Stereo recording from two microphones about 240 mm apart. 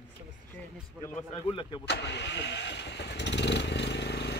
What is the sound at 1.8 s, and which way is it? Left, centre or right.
Vehicle, left.